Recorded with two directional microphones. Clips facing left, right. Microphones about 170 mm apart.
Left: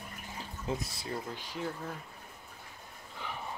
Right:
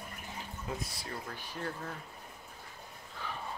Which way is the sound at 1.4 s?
10° left (ahead or behind).